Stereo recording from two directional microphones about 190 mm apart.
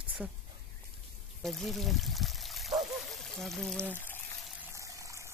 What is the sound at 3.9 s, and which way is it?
Speech, 10° left (ahead or behind).